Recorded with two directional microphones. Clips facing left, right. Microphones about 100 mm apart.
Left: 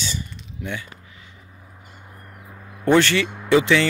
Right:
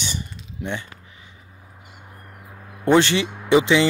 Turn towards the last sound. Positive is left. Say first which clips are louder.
# right 1 dB
turn(degrees=-20)  # may be behind; listen again after turning